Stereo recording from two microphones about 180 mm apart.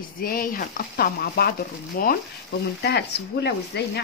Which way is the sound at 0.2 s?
55° left (ahead or behind).